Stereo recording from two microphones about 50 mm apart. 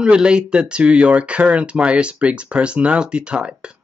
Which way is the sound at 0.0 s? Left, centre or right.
Centre.